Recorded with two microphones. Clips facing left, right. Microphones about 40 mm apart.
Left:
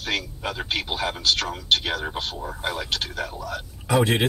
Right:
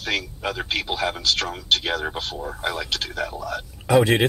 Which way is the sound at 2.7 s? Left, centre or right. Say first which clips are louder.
Right 1 dB; right.